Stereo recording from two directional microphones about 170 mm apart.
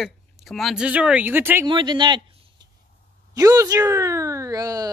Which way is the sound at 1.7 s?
30° right (ahead or behind).